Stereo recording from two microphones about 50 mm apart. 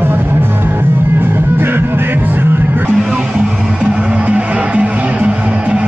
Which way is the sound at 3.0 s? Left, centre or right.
Centre.